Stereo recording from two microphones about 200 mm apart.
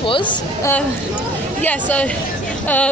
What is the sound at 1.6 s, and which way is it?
Speech, 10° left (ahead or behind).